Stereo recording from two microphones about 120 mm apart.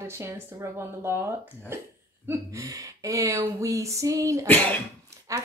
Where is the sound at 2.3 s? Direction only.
30° right (ahead or behind).